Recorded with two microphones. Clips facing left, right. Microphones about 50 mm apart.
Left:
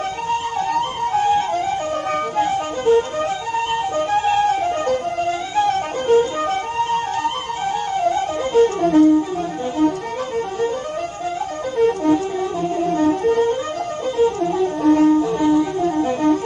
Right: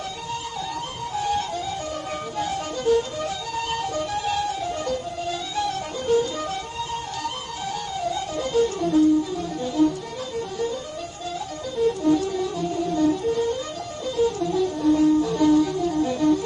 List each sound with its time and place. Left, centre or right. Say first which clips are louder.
0.3 s flute: left 11 dB; left
2.3 s music: left 7 dB; left
11.8 s music: left 4 dB; left